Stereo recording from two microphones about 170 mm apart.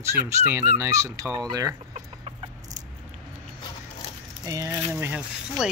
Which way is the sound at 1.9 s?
35° right (ahead or behind).